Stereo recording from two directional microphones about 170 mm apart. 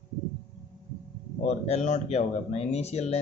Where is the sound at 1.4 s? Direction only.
40° left (ahead or behind).